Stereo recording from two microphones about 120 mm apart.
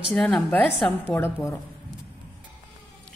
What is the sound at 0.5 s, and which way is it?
A woman's voice, 15° left (ahead or behind).